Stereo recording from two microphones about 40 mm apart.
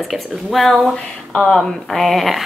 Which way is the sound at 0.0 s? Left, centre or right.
Centre.